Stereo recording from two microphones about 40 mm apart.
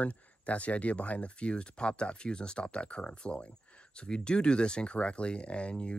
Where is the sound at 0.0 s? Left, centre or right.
Left.